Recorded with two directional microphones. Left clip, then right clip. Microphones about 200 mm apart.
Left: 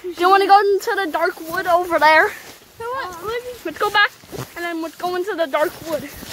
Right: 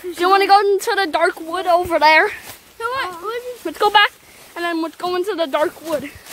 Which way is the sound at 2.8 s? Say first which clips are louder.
Right 4 dB; 50° right (ahead or behind).